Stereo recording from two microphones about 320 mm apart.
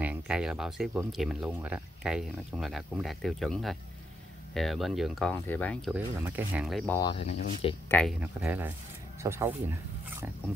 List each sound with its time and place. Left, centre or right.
0.0 s speech: centre
7.0 s speech: centre
7.9 s speech: centre